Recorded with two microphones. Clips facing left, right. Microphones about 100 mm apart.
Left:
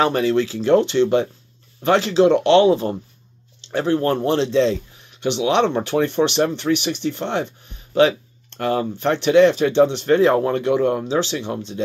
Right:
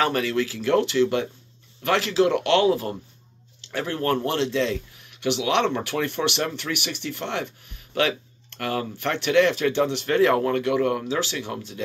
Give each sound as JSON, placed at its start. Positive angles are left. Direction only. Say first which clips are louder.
{"t": 0.0, "sound": "speech", "louder": "left 5 dB", "side_deg": 25}